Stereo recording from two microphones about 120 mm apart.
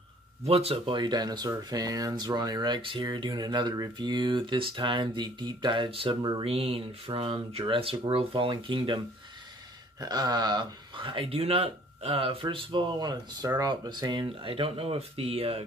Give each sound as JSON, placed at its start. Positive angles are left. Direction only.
{"t": 0.5, "sound": "speech", "side_deg": -55}
{"t": 6.4, "sound": "speech", "side_deg": -55}